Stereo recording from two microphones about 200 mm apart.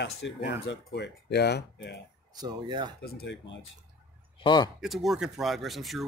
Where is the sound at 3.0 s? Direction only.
50° left (ahead or behind).